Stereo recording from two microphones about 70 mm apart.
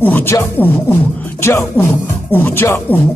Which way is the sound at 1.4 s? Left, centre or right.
Left.